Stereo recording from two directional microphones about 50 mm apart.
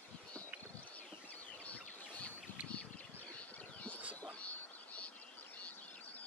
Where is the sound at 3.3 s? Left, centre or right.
Left.